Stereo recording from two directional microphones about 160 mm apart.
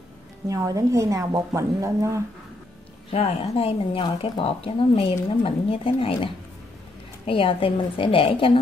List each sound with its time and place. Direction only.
0.5 s a woman's voice: 20° right (ahead or behind)
3.1 s speech: 40° left (ahead or behind)